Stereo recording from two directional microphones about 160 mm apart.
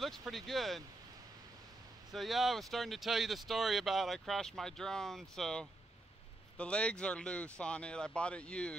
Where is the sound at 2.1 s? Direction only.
Centre (ahead or behind).